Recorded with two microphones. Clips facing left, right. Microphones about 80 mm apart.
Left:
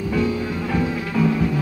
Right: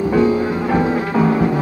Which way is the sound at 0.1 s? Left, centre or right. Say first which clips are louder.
Right 6 dB; right.